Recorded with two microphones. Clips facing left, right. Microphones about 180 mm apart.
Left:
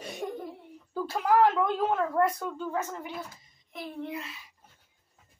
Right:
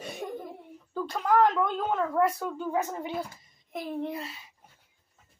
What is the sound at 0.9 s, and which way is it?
Speech, 5° left (ahead or behind).